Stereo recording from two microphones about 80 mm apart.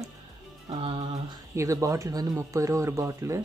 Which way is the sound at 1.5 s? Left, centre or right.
Right.